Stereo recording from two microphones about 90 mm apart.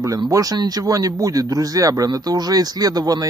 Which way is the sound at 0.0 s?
40° right (ahead or behind).